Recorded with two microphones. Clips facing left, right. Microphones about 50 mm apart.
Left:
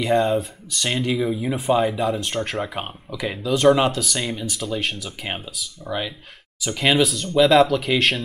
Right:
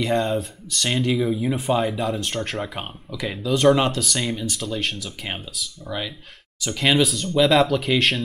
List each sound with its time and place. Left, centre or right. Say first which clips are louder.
0.0 s speech: left 3 dB; centre